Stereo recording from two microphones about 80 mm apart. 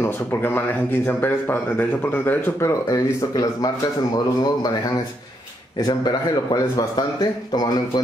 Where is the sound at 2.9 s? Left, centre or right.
Left.